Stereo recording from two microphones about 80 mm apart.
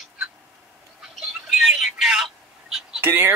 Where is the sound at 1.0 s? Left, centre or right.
Centre.